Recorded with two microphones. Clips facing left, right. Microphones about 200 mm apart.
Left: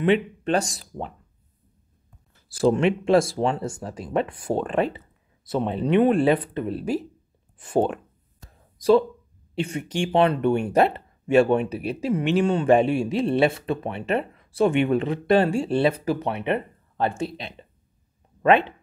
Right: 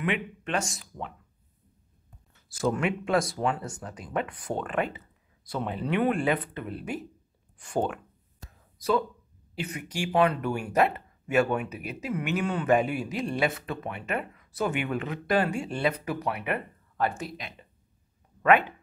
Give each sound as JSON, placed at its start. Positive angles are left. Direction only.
{"t": 0.0, "sound": "speech", "side_deg": 30}
{"t": 2.3, "sound": "speech", "side_deg": 30}
{"t": 8.5, "sound": "a sound", "side_deg": 30}
{"t": 9.6, "sound": "speech", "side_deg": 30}